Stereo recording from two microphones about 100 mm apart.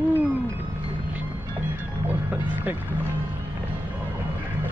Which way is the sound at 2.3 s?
20° right (ahead or behind).